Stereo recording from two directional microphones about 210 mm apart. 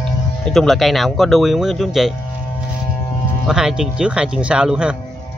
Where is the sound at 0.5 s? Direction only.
Centre (ahead or behind).